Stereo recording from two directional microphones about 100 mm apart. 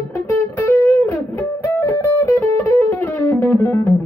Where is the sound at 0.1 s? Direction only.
30° left (ahead or behind).